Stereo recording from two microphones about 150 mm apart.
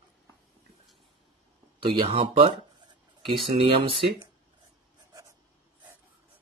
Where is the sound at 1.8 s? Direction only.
35° right (ahead or behind).